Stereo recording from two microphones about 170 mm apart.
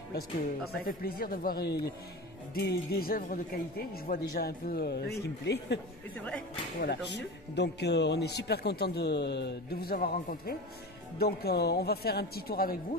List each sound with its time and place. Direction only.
0.7 s speech: 60° left (ahead or behind); by 5.8 s 80° left
6.1 s speech: 5° left (ahead or behind)
6.8 s speech: 85° left; by 12.7 s 60° left (ahead or behind)